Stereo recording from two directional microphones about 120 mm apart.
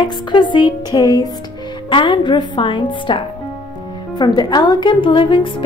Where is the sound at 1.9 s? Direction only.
45° left (ahead or behind).